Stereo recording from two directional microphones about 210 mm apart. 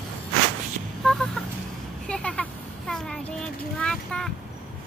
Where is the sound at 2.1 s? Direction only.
5° left (ahead or behind).